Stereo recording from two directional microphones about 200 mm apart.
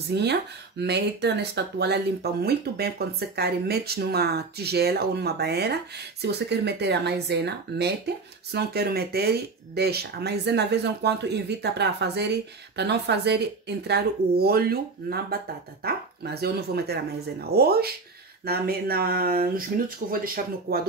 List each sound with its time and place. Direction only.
0.1 s speech: 55° right (ahead or behind)